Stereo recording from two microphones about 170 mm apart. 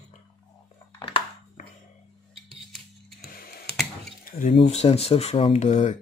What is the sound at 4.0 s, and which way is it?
Speech, 50° left (ahead or behind).